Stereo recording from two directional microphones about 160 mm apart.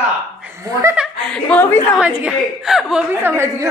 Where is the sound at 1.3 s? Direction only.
10° left (ahead or behind).